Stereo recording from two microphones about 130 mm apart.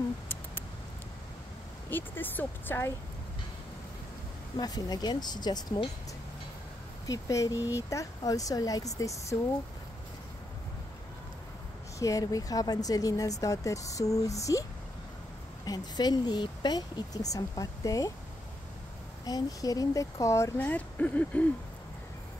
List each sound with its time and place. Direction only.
1.9 s speech: 15° left (ahead or behind)
4.6 s speech: 30° left (ahead or behind)
7.1 s speech: 25° left (ahead or behind)
12.0 s speech: 25° left (ahead or behind)
15.6 s speech: 30° left (ahead or behind)
19.2 s speech: 30° left (ahead or behind); by 21.5 s 10° left (ahead or behind)